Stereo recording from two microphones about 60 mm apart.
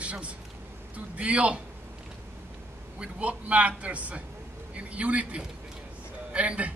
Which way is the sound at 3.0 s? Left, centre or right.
Right.